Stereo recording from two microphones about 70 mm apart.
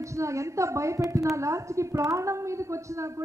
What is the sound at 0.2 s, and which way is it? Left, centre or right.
Speech, right.